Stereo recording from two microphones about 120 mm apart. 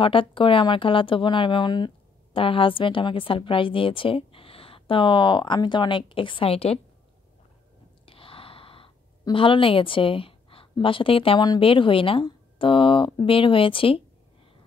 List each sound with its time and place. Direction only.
0.0 s a woman's voice: 45° left (ahead or behind)
8.0 s a sound: 50° left (ahead or behind)
9.2 s a woman's voice: 45° left (ahead or behind)